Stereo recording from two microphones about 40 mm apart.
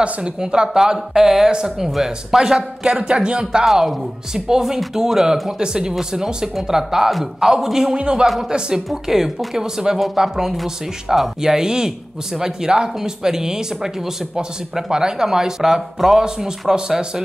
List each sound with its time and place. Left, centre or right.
0.0 s speech: right
3.0 s speech: right
3.6 s speech: centre